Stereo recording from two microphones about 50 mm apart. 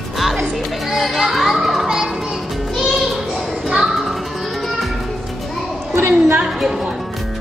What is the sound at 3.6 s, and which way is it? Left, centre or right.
Music, centre.